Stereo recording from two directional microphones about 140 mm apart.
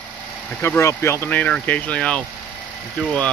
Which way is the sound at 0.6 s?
20° left (ahead or behind).